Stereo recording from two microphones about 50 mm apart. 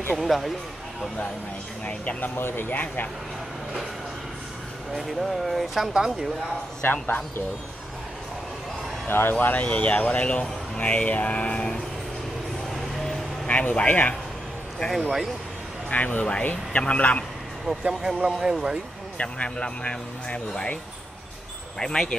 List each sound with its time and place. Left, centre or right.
0.2 s speech: centre
1.9 s speech: left
2.2 s speech: left
4.9 s speech: centre
6.8 s speech: left
9.0 s speech: left
13.5 s speech: left
14.9 s speech: centre
15.9 s speech: left
17.8 s speech: right
19.1 s speech: left
21.7 s speech: centre